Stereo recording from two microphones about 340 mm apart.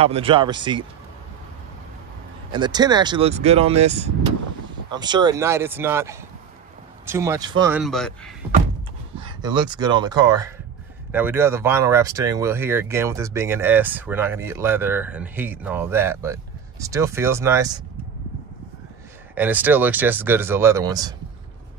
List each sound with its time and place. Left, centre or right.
0.0 s speech: centre
2.5 s speech: centre
9.2 s speech: centre
19.3 s speech: centre